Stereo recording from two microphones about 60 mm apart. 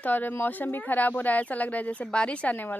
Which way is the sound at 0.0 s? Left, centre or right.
Left.